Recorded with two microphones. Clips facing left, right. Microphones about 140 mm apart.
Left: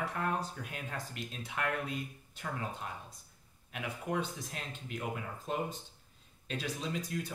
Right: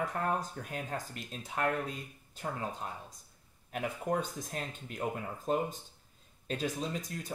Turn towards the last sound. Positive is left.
turn(degrees=-45)  # may be behind; listen again after turning